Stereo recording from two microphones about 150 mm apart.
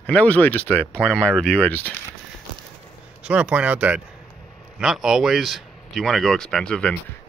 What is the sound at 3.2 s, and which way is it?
Speech, 10° right (ahead or behind).